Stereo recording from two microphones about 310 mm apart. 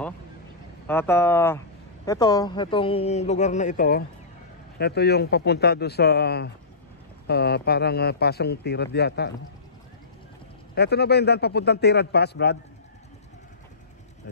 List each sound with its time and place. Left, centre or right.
0.8 s a man's voice: centre; by 9.3 s left
10.7 s speech: left